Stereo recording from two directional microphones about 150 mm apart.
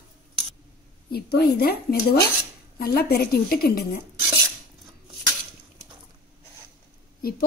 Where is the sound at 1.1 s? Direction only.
90° left.